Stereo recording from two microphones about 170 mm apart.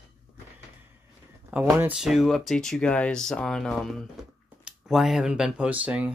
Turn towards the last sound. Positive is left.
turn(degrees=-10)  # may be behind; listen again after turning